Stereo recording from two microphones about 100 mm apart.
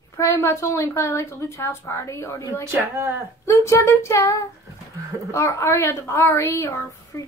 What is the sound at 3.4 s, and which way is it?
A woman's voice, 30° left (ahead or behind).